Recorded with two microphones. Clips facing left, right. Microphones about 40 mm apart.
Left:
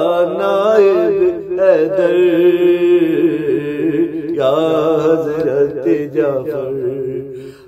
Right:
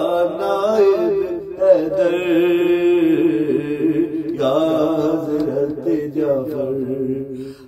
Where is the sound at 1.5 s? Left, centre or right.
Left.